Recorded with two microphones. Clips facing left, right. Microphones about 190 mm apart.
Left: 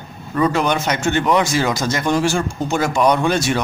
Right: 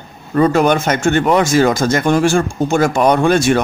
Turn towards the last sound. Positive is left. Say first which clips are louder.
# right 5 dB
turn(degrees=-50)  # may be behind; listen again after turning